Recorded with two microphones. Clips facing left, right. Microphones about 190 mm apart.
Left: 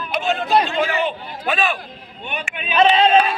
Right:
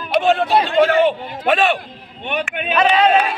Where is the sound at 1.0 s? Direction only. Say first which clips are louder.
Right 6 dB; 80° right.